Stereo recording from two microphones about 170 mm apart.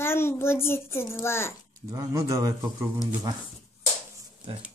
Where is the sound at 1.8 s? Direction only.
20° right (ahead or behind).